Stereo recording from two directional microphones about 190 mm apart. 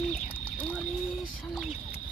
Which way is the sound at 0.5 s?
10° left (ahead or behind).